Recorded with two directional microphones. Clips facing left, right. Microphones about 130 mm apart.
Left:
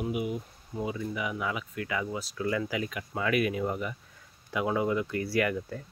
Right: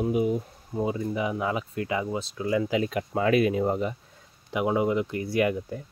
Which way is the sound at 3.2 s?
30° right (ahead or behind).